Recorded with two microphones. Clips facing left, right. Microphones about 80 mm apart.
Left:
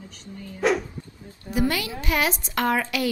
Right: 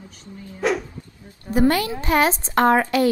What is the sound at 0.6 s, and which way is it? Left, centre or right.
Speech, centre.